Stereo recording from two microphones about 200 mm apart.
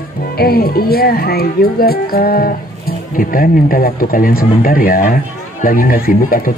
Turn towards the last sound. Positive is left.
turn(degrees=45)  # may be behind; listen again after turning